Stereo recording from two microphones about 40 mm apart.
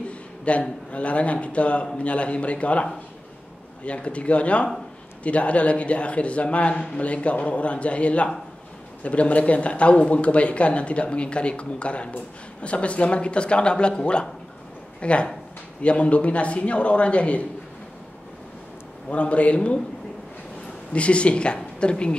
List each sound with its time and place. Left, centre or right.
0.1 s a man's voice: left
19.0 s a man's voice: left
20.9 s speech: left